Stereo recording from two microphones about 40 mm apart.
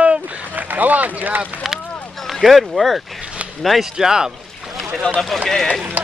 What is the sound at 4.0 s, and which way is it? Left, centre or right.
Speech, centre.